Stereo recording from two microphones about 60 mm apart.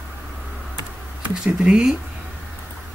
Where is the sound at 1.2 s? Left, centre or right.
Right.